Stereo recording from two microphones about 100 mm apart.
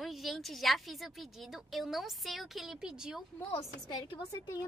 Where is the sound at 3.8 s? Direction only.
55° left (ahead or behind).